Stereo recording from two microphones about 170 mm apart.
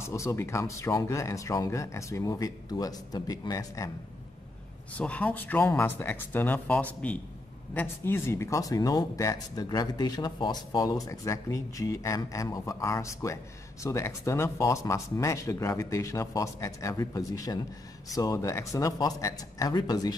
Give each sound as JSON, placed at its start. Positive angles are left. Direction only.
{"t": 0.0, "sound": "speech", "side_deg": 15}
{"t": 4.9, "sound": "speech", "side_deg": 10}